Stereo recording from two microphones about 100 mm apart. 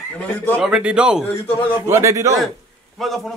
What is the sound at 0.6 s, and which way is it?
Speech, 10° right (ahead or behind).